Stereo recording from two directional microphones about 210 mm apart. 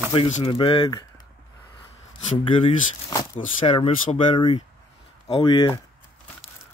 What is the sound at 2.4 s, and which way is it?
Speech, 25° left (ahead or behind).